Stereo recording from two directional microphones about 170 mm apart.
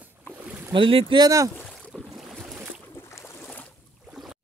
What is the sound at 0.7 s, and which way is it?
Speech, 30° right (ahead or behind).